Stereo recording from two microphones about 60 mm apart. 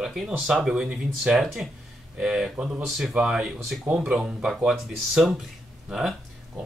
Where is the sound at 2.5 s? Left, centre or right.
Right.